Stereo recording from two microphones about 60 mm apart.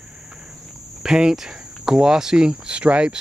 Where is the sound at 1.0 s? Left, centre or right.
Centre.